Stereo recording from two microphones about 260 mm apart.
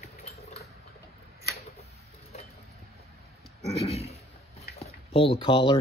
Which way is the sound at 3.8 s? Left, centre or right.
Left.